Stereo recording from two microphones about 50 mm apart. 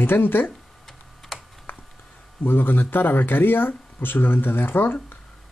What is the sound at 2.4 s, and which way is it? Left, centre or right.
Speech, left.